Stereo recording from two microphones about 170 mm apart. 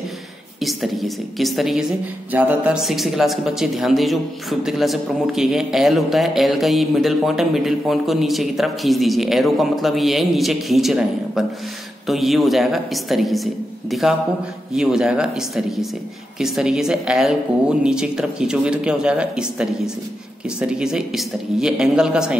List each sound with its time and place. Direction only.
0.6 s a man's voice: centre (ahead or behind)